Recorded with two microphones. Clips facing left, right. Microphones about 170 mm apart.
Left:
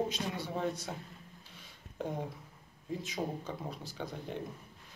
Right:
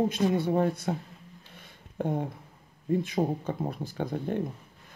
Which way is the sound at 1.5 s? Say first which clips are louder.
Right 3 dB; 55° right (ahead or behind).